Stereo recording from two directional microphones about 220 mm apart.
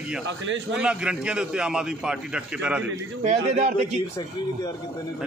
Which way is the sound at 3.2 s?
30° right (ahead or behind).